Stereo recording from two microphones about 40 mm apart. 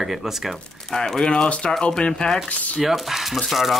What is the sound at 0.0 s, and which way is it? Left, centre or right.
Speech, centre.